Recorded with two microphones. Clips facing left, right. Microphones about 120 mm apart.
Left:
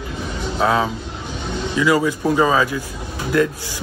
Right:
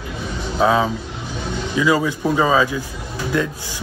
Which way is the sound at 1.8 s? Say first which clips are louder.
Left 1 dB; 20° right (ahead or behind).